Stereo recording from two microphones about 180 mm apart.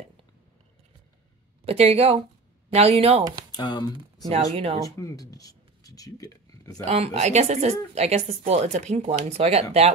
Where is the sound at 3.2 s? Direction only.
20° right (ahead or behind).